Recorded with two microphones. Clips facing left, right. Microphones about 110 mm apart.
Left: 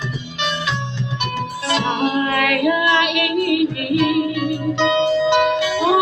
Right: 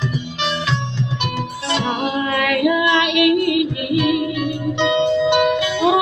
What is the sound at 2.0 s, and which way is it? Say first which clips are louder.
Female singing: left 2 dB; 25° right (ahead or behind).